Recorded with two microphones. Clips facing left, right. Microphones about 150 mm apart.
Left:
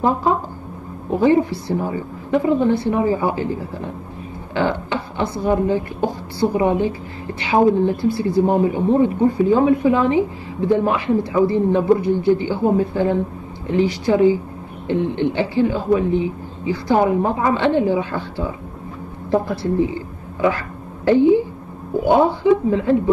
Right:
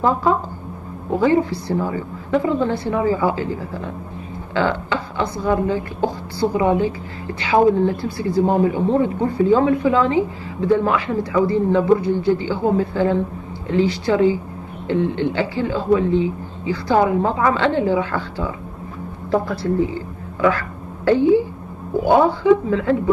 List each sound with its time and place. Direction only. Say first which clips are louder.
1.1 s speech: left 1 dB; 20° left (ahead or behind)
5.2 s speech: left 2 dB; 20° left (ahead or behind)